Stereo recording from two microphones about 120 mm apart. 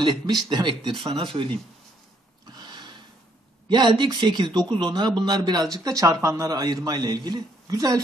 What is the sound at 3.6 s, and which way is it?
Speech, 40° right (ahead or behind).